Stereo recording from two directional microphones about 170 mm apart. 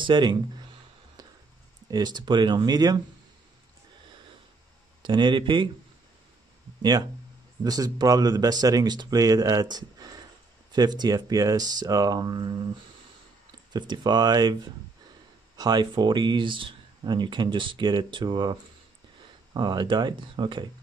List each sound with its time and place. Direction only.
0.0 s speech: 25° right (ahead or behind)
1.9 s speech: 25° right (ahead or behind)
5.0 s speech: 25° right (ahead or behind)
6.8 s speech: 25° right (ahead or behind)
13.7 s speech: 25° right (ahead or behind)